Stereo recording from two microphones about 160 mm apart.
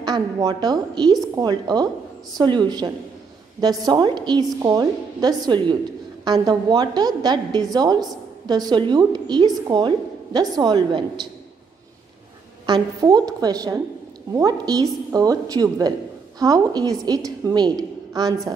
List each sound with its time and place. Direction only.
0.0 s a woman's voice: 25° right (ahead or behind)
12.6 s a woman's voice: 25° right (ahead or behind)